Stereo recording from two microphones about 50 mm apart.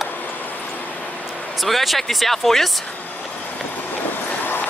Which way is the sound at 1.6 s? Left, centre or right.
Centre.